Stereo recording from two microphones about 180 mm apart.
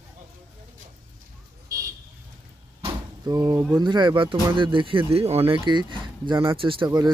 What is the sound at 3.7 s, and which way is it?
Speech, 25° right (ahead or behind).